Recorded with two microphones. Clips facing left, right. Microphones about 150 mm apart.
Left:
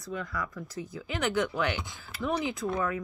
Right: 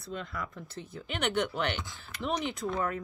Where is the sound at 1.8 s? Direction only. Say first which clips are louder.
Left 1 dB; 15° left (ahead or behind).